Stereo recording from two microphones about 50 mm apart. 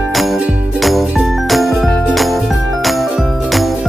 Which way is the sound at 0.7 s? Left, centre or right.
Centre.